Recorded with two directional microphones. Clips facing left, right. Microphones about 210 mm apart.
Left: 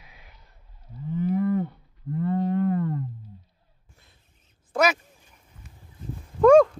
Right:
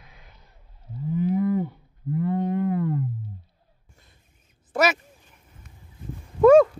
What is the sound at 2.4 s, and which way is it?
Music, 15° right (ahead or behind).